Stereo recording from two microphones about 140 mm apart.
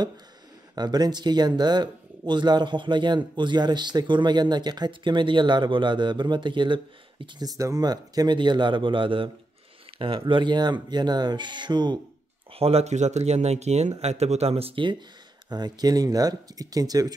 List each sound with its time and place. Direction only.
0.7 s speech: 30° right (ahead or behind)
12.5 s speech: 45° right (ahead or behind); by 17.1 s 25° right (ahead or behind)